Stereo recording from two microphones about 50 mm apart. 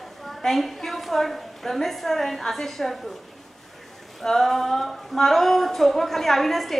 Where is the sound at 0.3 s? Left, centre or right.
Centre.